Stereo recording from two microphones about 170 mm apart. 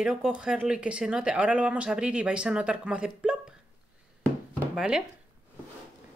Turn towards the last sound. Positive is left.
turn(degrees=-5)  # may be behind; listen again after turning